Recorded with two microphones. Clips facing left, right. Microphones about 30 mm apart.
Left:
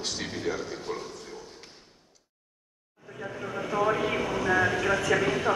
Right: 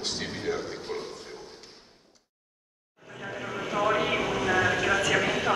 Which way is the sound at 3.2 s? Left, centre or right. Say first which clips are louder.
Even; right.